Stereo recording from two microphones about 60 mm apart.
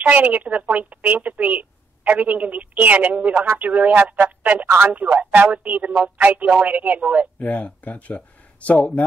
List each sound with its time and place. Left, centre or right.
0.0 s a woman's voice: right
4.6 s speech: right
4.9 s a woman's voice: right
7.3 s speech: left